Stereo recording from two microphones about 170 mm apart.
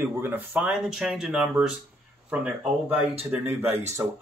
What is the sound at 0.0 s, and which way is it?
Speech, 10° right (ahead or behind).